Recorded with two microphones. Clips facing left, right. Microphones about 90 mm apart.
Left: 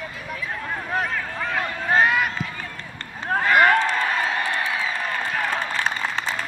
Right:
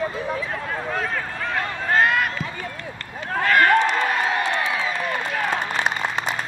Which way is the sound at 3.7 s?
20° right (ahead or behind).